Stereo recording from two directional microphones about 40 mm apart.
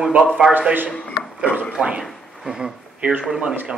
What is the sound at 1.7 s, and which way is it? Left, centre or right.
Speech, right.